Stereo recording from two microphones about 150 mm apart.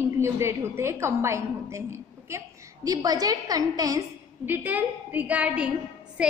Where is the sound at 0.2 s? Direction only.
20° right (ahead or behind).